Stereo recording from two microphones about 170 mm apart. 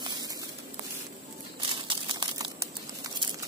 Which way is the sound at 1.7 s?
30° right (ahead or behind).